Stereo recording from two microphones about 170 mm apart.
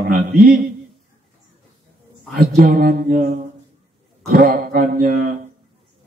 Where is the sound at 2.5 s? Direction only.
60° right (ahead or behind).